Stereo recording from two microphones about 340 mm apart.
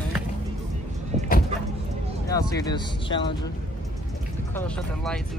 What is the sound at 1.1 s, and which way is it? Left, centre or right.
Vehicle, right.